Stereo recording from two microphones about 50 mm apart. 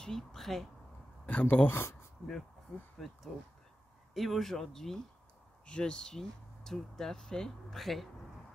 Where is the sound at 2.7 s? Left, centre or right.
Left.